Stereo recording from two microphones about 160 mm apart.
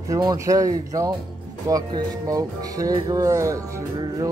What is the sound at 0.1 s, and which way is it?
Speech, 25° right (ahead or behind).